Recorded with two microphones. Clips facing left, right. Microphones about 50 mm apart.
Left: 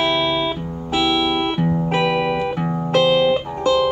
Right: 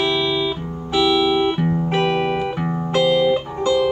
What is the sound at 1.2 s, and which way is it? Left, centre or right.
Music, left.